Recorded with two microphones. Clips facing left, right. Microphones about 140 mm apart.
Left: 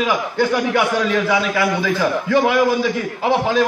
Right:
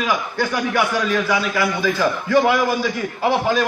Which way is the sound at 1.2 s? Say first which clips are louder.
Left 2 dB; 20° left (ahead or behind).